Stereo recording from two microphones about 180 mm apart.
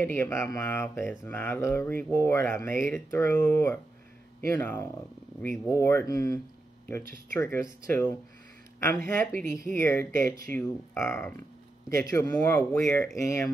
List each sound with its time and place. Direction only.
0.0 s speech: 10° left (ahead or behind)